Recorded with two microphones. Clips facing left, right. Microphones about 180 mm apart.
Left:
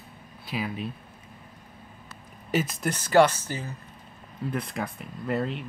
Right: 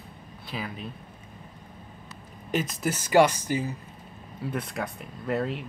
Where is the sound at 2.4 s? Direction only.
Centre (ahead or behind).